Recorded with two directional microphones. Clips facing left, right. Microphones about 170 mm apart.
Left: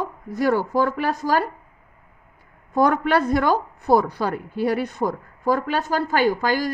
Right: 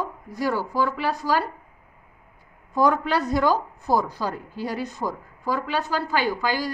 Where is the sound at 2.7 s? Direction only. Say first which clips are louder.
Left 3 dB; 55° left (ahead or behind).